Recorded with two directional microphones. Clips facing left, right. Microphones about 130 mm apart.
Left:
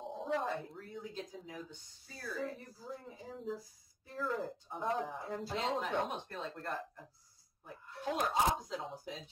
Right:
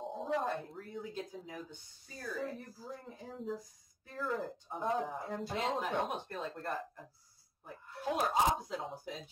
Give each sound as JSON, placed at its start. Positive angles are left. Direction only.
{"t": 0.0, "sound": "speech", "side_deg": 0}